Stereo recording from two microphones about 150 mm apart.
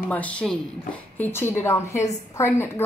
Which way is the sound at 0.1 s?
10° left (ahead or behind).